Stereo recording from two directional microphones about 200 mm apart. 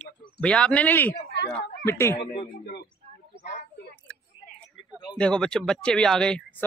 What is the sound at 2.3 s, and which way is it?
Speech, 50° left (ahead or behind).